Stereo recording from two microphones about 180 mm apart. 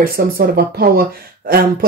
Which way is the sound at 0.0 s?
55° right (ahead or behind).